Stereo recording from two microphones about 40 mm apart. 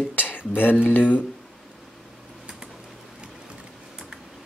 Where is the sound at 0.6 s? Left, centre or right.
Left.